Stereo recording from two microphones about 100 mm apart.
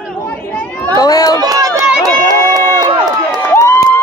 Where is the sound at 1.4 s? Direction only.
40° right (ahead or behind).